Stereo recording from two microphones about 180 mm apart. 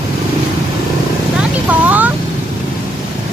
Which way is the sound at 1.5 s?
10° right (ahead or behind).